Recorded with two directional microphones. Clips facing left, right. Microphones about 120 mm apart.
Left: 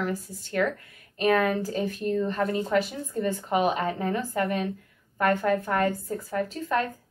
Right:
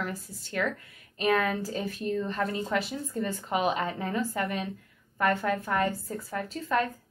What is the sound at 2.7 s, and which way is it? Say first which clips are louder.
A woman's voice: left 4 dB; 45° left (ahead or behind).